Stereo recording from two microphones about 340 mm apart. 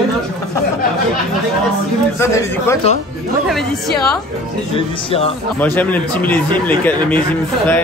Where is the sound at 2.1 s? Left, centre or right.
Centre.